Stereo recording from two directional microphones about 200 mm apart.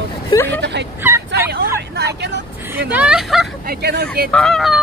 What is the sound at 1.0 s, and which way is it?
Fowl, 10° right (ahead or behind).